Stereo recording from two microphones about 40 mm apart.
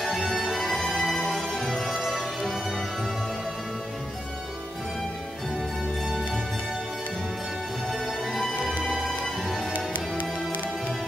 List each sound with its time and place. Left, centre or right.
0.0 s music: centre
7.9 s music: centre
9.7 s music: left